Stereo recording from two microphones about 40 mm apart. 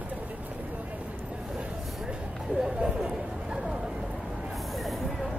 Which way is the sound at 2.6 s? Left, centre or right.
Centre.